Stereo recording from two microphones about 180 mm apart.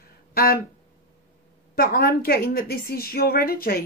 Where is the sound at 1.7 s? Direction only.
55° left (ahead or behind).